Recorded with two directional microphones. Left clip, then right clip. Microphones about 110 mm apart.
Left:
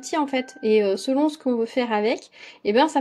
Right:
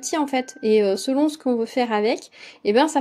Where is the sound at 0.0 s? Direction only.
35° right (ahead or behind).